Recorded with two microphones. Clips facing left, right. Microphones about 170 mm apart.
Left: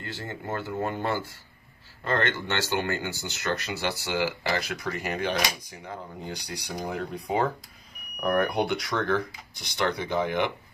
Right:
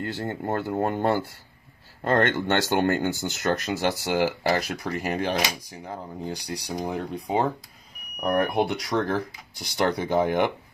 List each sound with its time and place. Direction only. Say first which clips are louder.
0.0 s speech: right 7 dB; 55° right (ahead or behind)